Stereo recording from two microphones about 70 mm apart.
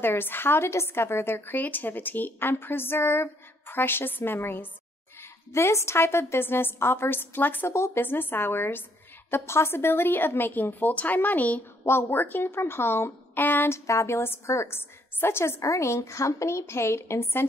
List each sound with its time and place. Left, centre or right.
0.0 s a woman's voice: left
11.8 s a woman's voice: left
13.8 s a woman's voice: left